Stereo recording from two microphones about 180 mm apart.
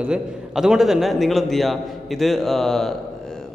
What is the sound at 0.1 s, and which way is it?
Speech, 5° right (ahead or behind).